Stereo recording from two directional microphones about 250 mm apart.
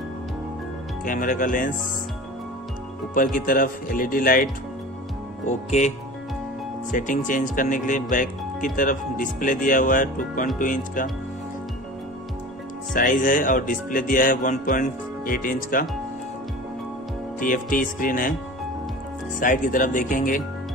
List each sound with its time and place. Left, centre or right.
1.0 s speech: left
3.2 s speech: left
5.5 s speech: left
12.9 s speech: left
17.4 s speech: left
19.4 s speech: left